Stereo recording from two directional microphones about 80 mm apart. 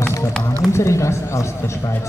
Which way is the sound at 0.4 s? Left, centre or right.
Left.